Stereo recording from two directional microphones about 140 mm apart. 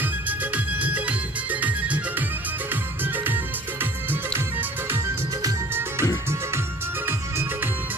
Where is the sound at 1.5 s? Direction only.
10° right (ahead or behind).